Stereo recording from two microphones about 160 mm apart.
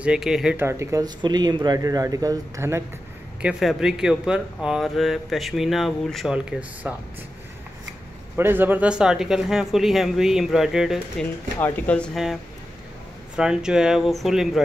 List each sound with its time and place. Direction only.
0.0 s speech: 5° right (ahead or behind)
0.7 s speech: 20° right (ahead or behind)
3.4 s speech: 5° right (ahead or behind)
8.4 s speech: 15° right (ahead or behind)
11.6 s speech: 10° left (ahead or behind)
13.4 s speech: 5° right (ahead or behind)